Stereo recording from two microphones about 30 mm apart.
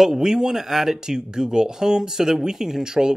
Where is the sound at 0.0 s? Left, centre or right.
Centre.